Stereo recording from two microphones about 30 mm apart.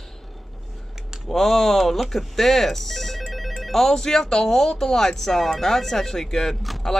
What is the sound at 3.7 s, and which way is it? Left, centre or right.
Speech, centre.